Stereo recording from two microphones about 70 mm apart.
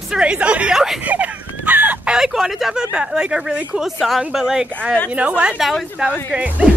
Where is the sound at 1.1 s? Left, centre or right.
Right.